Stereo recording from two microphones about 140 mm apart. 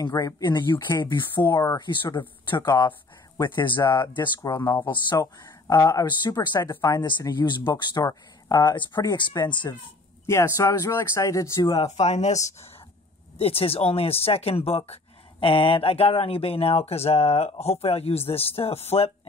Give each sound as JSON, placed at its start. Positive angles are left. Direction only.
{"t": 0.0, "sound": "speech", "side_deg": 30}
{"t": 4.6, "sound": "speech", "side_deg": 20}
{"t": 10.2, "sound": "speech", "side_deg": 20}
{"t": 11.6, "sound": "speech", "side_deg": 40}
{"t": 13.4, "sound": "speech", "side_deg": 45}